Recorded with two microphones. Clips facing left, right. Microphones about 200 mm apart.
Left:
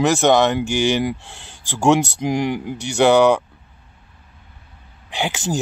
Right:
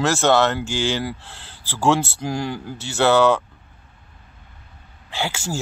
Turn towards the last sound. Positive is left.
turn(degrees=20)  # may be behind; listen again after turning